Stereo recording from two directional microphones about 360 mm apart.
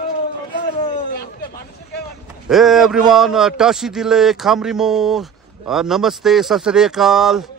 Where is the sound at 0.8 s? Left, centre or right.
Left.